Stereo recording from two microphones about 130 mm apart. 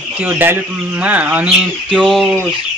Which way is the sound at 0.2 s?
15° right (ahead or behind).